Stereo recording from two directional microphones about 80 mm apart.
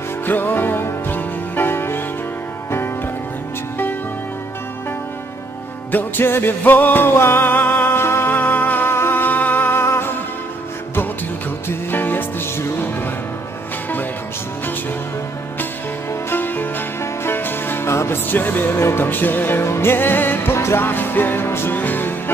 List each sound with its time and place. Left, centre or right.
0.3 s music: left
5.9 s music: left
11.9 s music: left
16.1 s music: left